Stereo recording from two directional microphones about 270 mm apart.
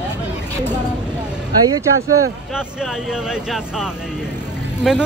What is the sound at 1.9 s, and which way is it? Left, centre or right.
Speech, right.